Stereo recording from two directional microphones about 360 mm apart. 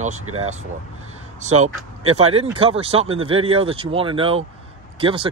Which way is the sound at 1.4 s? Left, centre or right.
Centre.